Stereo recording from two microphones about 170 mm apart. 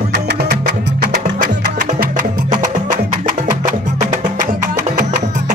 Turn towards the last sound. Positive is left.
turn(degrees=-50)  # may be behind; listen again after turning